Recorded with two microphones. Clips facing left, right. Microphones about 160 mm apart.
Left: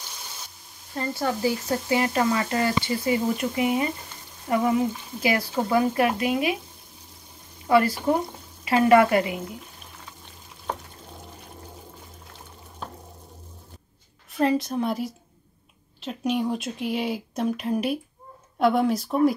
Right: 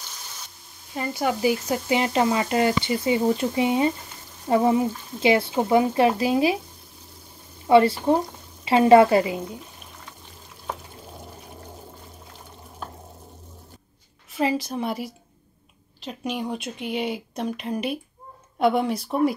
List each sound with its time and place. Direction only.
0.9 s speech: 15° right (ahead or behind); by 6.6 s 30° right (ahead or behind)
7.6 s speech: 25° right (ahead or behind)
10.7 s frying: 5° right (ahead or behind)
14.3 s speech: 5° right (ahead or behind)